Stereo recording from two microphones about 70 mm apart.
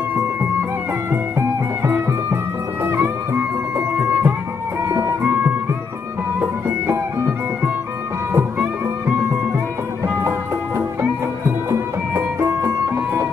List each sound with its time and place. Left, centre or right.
1.8 s music: right
8.3 s music: right
10.8 s music: right